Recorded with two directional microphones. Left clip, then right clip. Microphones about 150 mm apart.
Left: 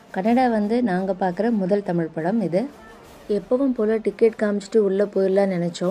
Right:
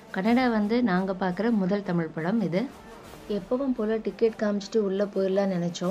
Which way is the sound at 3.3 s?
60° left (ahead or behind).